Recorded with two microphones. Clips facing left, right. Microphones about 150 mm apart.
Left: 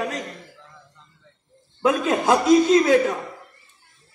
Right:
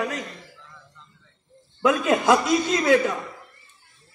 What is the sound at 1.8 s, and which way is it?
A man's voice, 35° left (ahead or behind).